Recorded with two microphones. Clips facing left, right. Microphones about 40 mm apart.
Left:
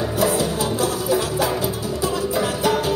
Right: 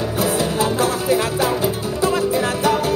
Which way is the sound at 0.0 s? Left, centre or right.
Right.